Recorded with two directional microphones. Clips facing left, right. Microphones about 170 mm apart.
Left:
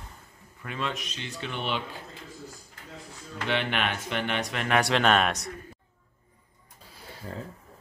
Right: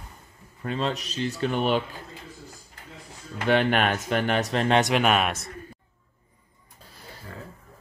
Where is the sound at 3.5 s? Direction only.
45° right (ahead or behind).